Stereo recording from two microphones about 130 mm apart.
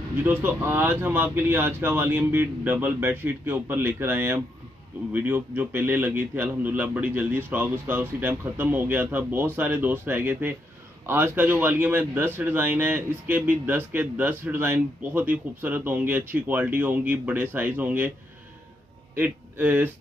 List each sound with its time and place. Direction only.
0.2 s speech: 15° right (ahead or behind)
19.1 s speech: 15° right (ahead or behind)